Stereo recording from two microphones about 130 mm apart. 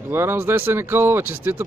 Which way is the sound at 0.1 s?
20° right (ahead or behind).